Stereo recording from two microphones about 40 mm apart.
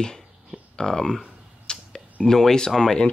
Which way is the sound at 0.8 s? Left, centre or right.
Centre.